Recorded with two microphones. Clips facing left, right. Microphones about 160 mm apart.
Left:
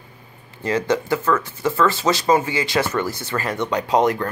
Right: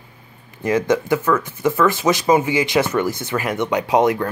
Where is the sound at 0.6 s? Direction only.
15° right (ahead or behind).